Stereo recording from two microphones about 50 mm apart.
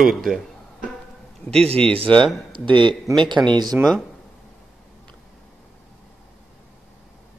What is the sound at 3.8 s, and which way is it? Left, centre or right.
Speech, right.